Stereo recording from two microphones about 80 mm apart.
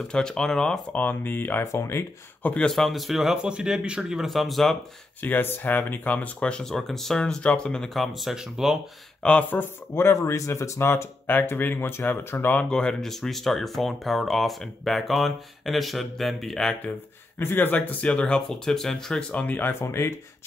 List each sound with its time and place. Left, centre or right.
0.1 s speech: centre
0.9 s speech: left
1.6 s speech: left
2.4 s speech: centre
2.7 s speech: centre
5.2 s speech: left; by 8.7 s centre
9.2 s speech: centre
12.5 s speech: centre
17.4 s speech: left
19.7 s speech: left